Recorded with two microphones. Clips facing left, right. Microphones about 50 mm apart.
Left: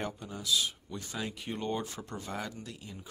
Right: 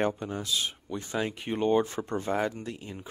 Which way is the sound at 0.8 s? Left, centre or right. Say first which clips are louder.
Right 7 dB; right.